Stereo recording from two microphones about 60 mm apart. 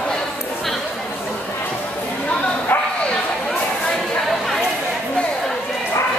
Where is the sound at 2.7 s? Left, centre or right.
Left.